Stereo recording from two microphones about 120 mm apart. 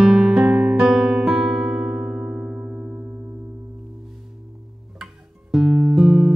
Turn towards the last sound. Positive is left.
turn(degrees=-5)  # may be behind; listen again after turning